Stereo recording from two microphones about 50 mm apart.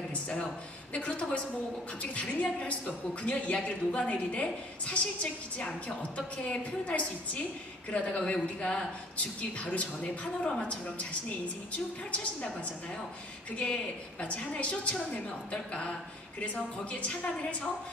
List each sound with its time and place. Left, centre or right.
0.1 s a woman's voice: left
12.1 s a woman's voice: left
14.2 s a woman's voice: left